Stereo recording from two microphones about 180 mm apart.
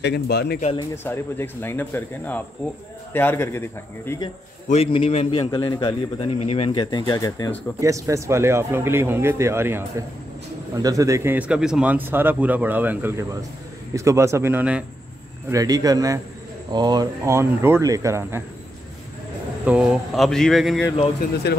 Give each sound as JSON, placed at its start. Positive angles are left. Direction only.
{"t": 0.0, "sound": "speech", "side_deg": 65}
{"t": 1.0, "sound": "speech", "side_deg": 10}
{"t": 4.6, "sound": "a man's voice", "side_deg": 35}
{"t": 7.8, "sound": "a man's voice", "side_deg": -15}
{"t": 15.5, "sound": "a man's voice", "side_deg": -20}
{"t": 19.6, "sound": "speech", "side_deg": -5}